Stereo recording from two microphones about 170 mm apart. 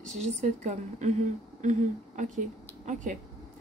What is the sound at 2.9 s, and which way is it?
Speech, 50° right (ahead or behind).